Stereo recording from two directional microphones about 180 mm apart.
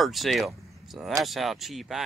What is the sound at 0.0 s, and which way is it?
Speech, centre (ahead or behind).